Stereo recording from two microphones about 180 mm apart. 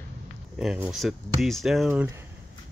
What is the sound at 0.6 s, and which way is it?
Speech, 5° right (ahead or behind).